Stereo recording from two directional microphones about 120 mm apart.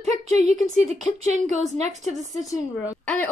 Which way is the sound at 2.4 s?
30° left (ahead or behind).